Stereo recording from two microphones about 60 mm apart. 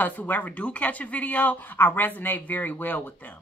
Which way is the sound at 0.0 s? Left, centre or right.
Left.